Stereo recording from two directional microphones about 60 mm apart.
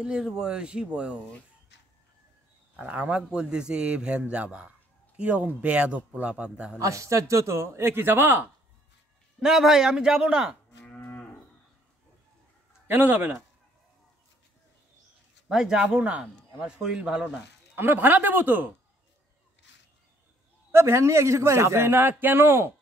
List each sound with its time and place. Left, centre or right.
0.0 s speech: centre
2.7 s a man's voice: right
6.8 s a man's voice: right
9.4 s speech: centre
10.9 s livestock: left
12.8 s speech: right
15.4 s speech: centre
17.7 s speech: right
20.7 s a man's voice: right